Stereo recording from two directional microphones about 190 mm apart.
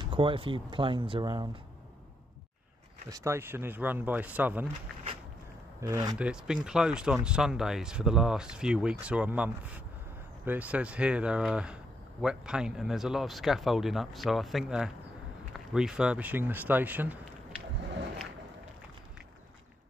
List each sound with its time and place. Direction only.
0.0 s speech: 25° right (ahead or behind)
3.1 s speech: 15° right (ahead or behind)
5.8 s speech: 15° right (ahead or behind)
6.1 s speech: 5° right (ahead or behind)